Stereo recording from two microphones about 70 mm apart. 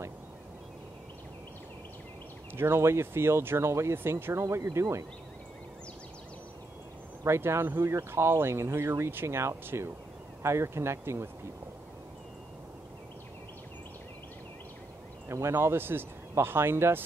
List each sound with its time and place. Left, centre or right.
2.5 s speech: right
7.2 s speech: right
15.2 s speech: right